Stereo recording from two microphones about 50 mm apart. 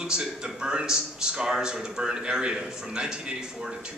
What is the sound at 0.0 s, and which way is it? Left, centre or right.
A man's voice, centre.